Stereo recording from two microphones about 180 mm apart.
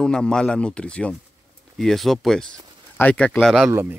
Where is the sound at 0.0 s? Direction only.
5° left (ahead or behind).